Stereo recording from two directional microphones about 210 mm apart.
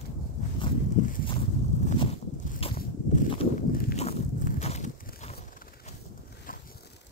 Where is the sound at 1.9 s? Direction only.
30° left (ahead or behind).